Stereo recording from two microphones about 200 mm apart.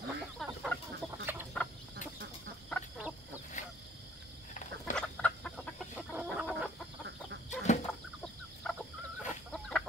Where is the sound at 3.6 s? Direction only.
35° left (ahead or behind).